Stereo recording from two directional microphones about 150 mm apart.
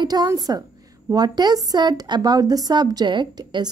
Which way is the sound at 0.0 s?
25° right (ahead or behind).